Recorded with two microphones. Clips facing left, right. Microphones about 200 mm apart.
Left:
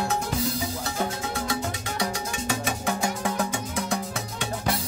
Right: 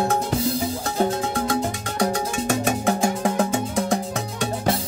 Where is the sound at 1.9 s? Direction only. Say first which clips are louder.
Right 9 dB; 50° right (ahead or behind).